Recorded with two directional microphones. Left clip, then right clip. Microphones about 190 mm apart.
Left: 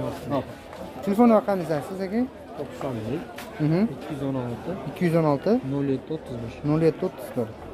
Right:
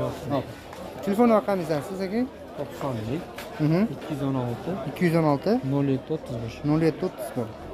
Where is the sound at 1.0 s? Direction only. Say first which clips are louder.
Left 1 dB; 15° left (ahead or behind).